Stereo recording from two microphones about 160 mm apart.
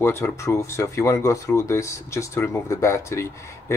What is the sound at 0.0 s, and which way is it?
Speech, 15° left (ahead or behind).